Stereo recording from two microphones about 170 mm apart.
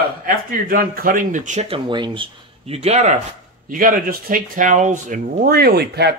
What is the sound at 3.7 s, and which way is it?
Speech, 55° right (ahead or behind).